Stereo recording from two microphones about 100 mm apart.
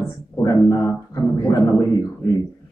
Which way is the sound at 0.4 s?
35° left (ahead or behind).